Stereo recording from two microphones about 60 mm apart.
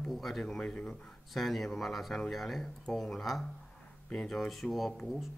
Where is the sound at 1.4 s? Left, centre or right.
Centre.